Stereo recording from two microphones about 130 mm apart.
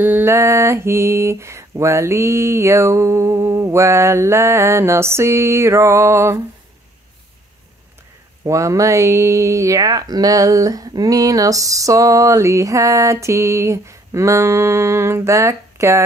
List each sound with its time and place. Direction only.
0.0 s speech: 15° right (ahead or behind)
8.5 s speech: 25° right (ahead or behind)